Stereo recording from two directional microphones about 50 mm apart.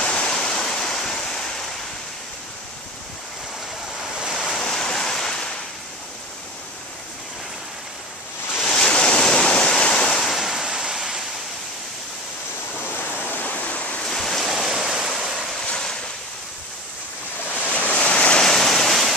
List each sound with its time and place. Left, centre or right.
0.0 s waves: centre
4.3 s waves: centre
8.6 s waves: centre
10.1 s waves: centre
12.9 s waves: left
14.0 s waves: centre
15.6 s waves: centre
17.6 s waves: left
17.9 s waves: left
18.5 s waves: centre